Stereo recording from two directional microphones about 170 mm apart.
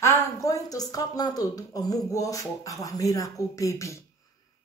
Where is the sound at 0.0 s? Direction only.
20° left (ahead or behind).